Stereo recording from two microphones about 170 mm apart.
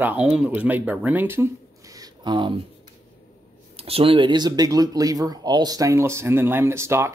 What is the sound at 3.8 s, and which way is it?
Speech, 35° right (ahead or behind).